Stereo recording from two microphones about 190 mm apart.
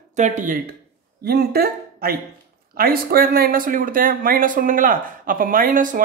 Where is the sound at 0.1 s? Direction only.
40° right (ahead or behind).